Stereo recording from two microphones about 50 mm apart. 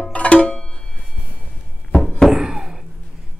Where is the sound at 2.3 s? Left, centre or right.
Centre.